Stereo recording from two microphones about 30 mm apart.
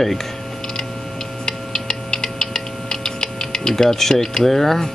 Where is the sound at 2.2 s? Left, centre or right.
Left.